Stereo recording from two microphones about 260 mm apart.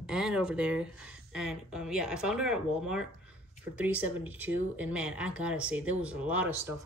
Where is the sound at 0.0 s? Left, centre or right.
Centre.